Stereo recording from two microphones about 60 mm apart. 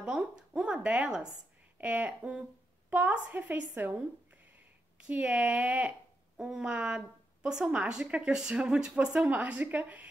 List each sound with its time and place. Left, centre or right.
0.0 s a woman's voice: centre
6.3 s a woman's voice: centre